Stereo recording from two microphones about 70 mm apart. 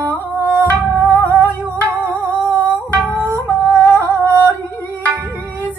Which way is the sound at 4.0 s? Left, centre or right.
Left.